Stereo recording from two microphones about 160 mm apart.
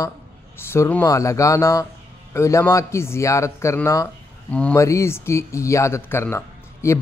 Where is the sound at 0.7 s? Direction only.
15° left (ahead or behind).